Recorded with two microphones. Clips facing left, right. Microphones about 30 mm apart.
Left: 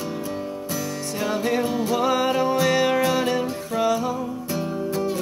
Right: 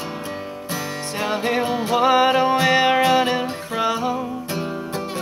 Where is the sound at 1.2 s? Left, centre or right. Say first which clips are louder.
Right 2 dB; right.